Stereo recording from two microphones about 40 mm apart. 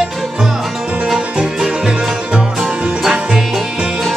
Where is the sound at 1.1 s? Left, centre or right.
Centre.